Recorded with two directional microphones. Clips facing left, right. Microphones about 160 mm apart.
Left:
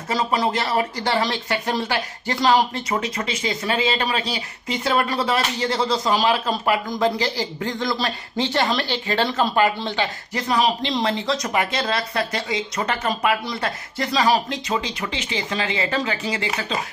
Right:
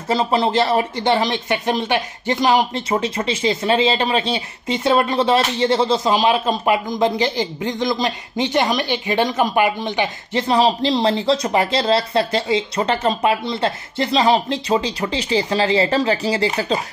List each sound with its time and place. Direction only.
0.1 s speech: 25° right (ahead or behind)
10.5 s speech: 30° right (ahead or behind)